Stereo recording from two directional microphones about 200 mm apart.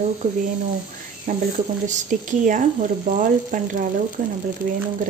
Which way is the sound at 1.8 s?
40° right (ahead or behind).